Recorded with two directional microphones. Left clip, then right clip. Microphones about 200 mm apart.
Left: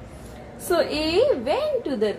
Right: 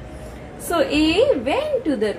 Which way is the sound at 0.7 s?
40° left (ahead or behind).